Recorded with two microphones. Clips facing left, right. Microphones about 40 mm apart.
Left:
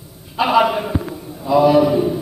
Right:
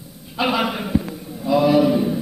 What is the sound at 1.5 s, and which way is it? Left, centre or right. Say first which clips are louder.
Speech: left 3 dB; centre.